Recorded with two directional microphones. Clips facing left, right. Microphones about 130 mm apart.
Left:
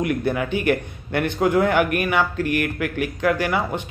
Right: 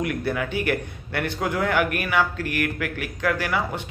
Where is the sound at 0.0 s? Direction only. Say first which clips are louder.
Left 3 dB; 25° left (ahead or behind).